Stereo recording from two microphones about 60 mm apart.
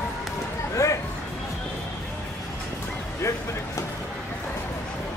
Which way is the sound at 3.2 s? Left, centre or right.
Left.